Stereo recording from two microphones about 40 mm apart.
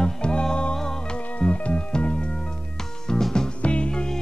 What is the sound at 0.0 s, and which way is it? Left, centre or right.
Music, left.